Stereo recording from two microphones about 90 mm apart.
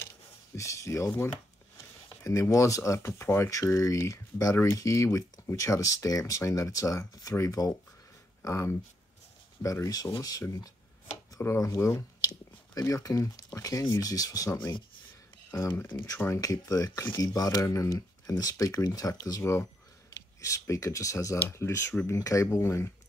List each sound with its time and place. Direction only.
0.6 s speech: 35° left (ahead or behind)
2.5 s speech: 35° left (ahead or behind)
14.5 s speech: 30° left (ahead or behind)
16.3 s speech: 40° left (ahead or behind)
21.4 s speech: 25° left (ahead or behind)